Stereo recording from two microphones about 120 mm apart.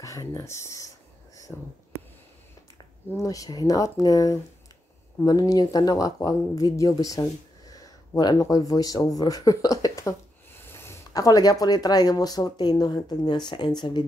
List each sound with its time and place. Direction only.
0.0 s speech: 25° left (ahead or behind)
1.5 s speech: centre (ahead or behind)
3.1 s speech: 30° left (ahead or behind)